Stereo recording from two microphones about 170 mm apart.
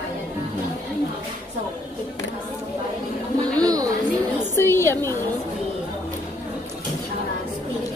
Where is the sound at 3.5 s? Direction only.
20° right (ahead or behind).